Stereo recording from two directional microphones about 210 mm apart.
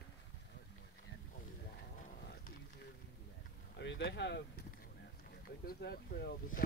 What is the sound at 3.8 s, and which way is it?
Speech, 55° left (ahead or behind).